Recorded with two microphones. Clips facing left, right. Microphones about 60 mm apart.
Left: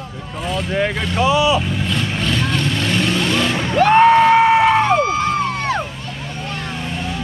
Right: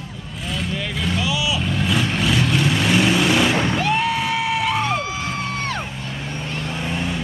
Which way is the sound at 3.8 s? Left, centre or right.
Left.